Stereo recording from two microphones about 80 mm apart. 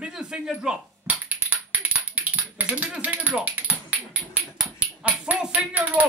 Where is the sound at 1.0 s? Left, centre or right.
Centre.